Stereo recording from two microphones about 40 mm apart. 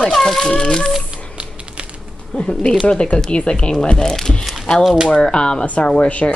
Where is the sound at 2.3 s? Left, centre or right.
Left.